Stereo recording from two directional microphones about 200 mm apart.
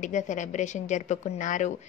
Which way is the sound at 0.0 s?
40° left (ahead or behind).